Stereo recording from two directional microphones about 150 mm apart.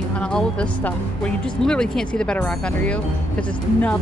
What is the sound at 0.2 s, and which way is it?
Speech, 5° left (ahead or behind).